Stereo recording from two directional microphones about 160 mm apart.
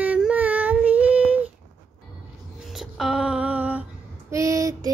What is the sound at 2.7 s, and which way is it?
Music, centre (ahead or behind).